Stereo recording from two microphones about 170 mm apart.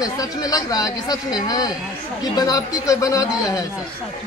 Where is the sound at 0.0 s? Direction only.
20° left (ahead or behind).